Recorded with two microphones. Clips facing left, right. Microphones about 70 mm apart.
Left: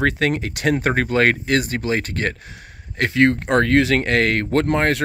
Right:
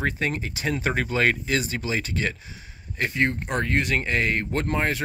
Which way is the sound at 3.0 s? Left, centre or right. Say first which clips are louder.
Left 8 dB; left.